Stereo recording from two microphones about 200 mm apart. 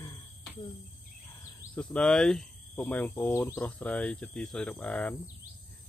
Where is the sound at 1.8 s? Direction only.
5° left (ahead or behind).